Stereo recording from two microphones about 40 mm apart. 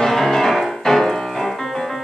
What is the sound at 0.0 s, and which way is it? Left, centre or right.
Music, centre.